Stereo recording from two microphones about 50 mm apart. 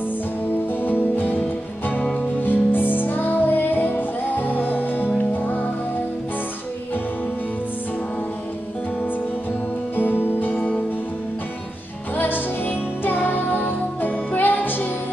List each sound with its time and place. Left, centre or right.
0.8 s music: left
2.4 s music: left
9.9 s music: left
12.2 s music: left